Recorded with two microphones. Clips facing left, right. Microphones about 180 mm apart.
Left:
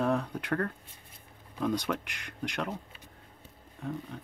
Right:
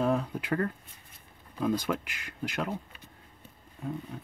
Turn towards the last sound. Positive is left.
turn(degrees=-5)  # may be behind; listen again after turning